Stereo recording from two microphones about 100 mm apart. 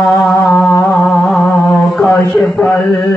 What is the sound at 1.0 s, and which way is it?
Music, 5° left (ahead or behind).